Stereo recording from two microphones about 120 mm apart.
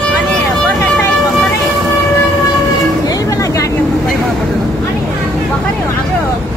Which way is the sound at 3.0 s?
30° left (ahead or behind).